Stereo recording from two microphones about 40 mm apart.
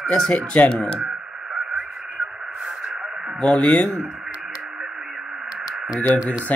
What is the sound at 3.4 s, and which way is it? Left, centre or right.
Speech, left.